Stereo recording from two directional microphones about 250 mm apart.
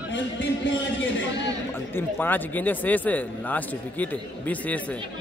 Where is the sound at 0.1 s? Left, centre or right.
Left.